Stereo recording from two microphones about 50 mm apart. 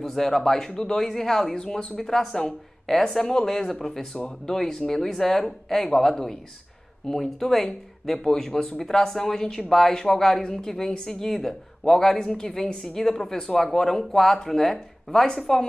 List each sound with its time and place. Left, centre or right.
0.0 s speech: centre